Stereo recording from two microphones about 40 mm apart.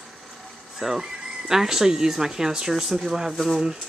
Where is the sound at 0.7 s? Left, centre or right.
Centre.